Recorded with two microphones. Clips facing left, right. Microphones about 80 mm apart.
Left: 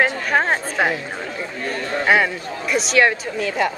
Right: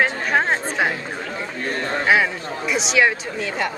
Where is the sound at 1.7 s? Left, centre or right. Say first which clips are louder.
Right 1 dB; right.